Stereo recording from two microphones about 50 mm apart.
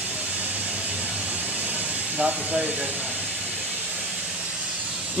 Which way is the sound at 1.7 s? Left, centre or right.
Right.